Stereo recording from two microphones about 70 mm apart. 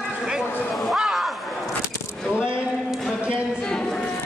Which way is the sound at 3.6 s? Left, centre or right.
Centre.